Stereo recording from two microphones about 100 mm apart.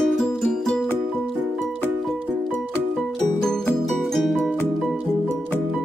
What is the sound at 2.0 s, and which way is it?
Music, centre (ahead or behind).